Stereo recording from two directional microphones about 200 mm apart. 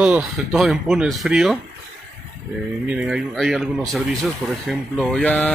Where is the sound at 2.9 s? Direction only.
5° right (ahead or behind).